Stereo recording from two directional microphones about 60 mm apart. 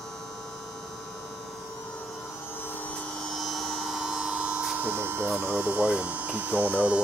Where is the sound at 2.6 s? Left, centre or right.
Left.